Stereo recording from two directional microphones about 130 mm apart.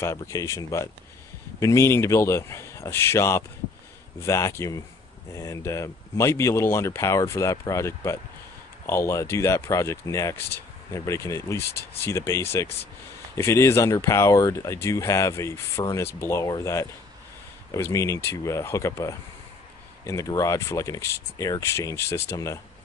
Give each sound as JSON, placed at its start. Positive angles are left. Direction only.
{"t": 0.0, "sound": "speech", "side_deg": 25}